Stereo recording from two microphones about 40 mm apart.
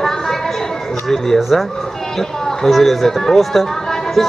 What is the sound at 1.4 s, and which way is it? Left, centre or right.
Speech, centre.